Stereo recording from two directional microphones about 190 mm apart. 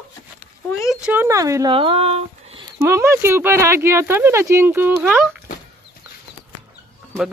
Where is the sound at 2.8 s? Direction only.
15° right (ahead or behind).